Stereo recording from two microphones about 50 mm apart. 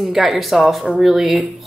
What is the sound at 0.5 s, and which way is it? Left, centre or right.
Speech, centre.